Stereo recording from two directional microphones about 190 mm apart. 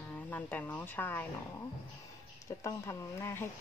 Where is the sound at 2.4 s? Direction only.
15° left (ahead or behind).